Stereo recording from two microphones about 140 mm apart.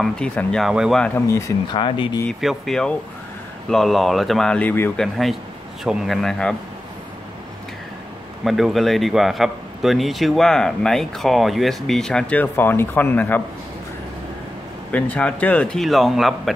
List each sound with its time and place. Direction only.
0.0 s a man's voice: 5° left (ahead or behind)
1.0 s speech: 15° left (ahead or behind)
1.7 s speech: 35° left (ahead or behind)
2.4 s a man's voice: centre (ahead or behind)
5.0 s a man's voice: centre (ahead or behind)
8.5 s a man's voice: centre (ahead or behind)
14.9 s speech: 10° left (ahead or behind)